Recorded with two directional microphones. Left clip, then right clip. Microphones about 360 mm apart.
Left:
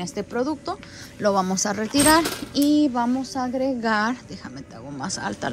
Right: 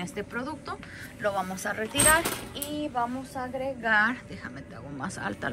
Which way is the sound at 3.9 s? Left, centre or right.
Centre.